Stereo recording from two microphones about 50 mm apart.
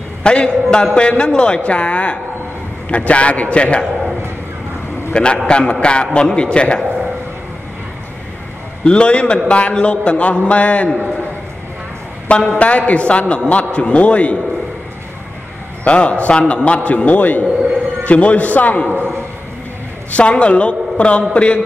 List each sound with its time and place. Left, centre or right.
0.2 s a man's voice: centre
5.1 s a man's voice: left
8.8 s a man's voice: left
12.3 s a man's voice: centre
15.8 s a man's voice: left
18.9 s a man's voice: right
20.1 s a man's voice: left